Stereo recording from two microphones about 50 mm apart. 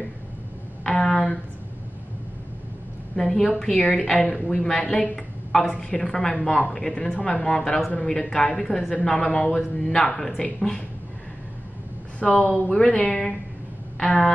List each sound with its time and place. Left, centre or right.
0.8 s a sound: centre
3.2 s a woman's voice: centre
3.7 s a woman's voice: left
4.7 s a woman's voice: left
12.2 s speech: left
13.9 s a sound: centre